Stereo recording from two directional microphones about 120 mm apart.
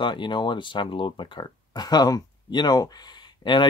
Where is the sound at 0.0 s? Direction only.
40° left (ahead or behind).